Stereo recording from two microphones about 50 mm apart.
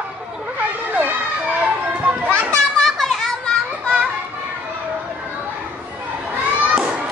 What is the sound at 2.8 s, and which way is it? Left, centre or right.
Children playing, centre.